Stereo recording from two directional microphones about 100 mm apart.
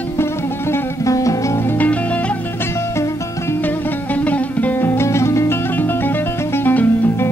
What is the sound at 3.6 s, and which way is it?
Music, 15° left (ahead or behind).